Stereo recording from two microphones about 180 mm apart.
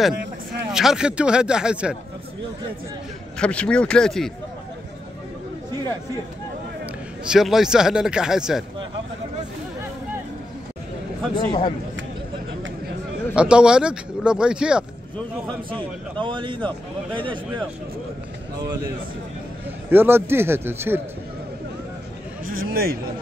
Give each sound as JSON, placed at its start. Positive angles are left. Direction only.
{"t": 0.7, "sound": "speech", "side_deg": -5}
{"t": 3.3, "sound": "speech", "side_deg": 5}
{"t": 7.2, "sound": "speech", "side_deg": 0}
{"t": 11.3, "sound": "speech", "side_deg": 25}
{"t": 13.3, "sound": "speech", "side_deg": -5}
{"t": 15.1, "sound": "speech", "side_deg": 5}
{"t": 16.2, "sound": "a man's voice", "side_deg": -25}
{"t": 19.9, "sound": "speech", "side_deg": -10}
{"t": 22.4, "sound": "a sound", "side_deg": -55}